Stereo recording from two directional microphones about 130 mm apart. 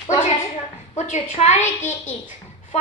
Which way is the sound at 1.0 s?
65° left (ahead or behind).